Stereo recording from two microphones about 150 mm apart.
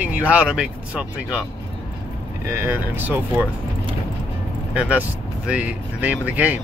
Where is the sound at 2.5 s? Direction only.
15° right (ahead or behind).